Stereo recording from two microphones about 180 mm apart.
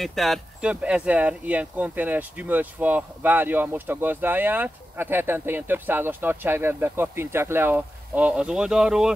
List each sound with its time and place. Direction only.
0.0 s speech: centre (ahead or behind)